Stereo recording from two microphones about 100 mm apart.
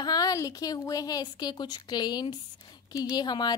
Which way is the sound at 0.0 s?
40° left (ahead or behind).